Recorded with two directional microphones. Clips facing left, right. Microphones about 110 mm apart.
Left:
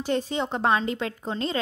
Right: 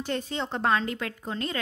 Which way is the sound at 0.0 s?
15° left (ahead or behind).